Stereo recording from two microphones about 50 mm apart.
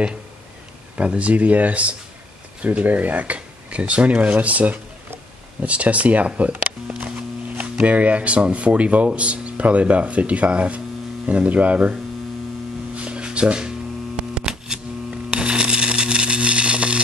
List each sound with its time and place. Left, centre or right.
0.9 s speech: right
7.7 s speech: right
12.9 s mains hum: right
15.3 s a sound: centre